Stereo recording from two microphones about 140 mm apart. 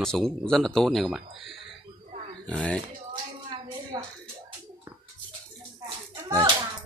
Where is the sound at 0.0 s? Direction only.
5° left (ahead or behind).